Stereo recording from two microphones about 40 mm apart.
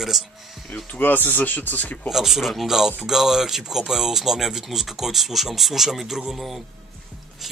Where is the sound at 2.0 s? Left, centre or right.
Centre.